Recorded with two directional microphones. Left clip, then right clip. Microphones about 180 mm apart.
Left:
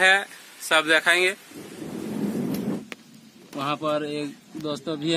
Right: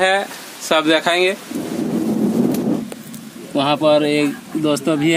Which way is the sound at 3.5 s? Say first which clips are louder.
Right 11 dB; 5° left (ahead or behind).